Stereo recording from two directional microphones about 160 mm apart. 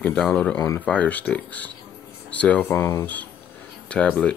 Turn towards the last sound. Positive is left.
turn(degrees=5)  # may be behind; listen again after turning